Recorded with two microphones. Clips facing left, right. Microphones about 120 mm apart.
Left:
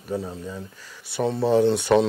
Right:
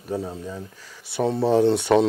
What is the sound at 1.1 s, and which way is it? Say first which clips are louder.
Speech: right 1 dB; 20° right (ahead or behind).